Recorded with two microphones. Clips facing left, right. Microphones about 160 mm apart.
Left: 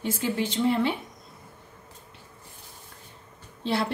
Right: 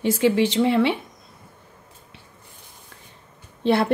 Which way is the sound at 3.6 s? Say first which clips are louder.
Right 8 dB; 60° right (ahead or behind).